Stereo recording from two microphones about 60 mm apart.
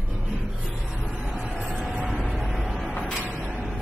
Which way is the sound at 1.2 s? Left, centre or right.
Right.